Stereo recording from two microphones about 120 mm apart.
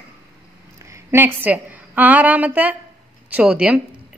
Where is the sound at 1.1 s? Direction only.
15° right (ahead or behind).